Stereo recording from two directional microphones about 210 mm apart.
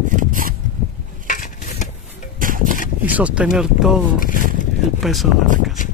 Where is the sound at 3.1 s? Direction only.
5° right (ahead or behind).